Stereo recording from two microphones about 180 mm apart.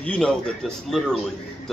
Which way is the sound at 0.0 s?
5° left (ahead or behind).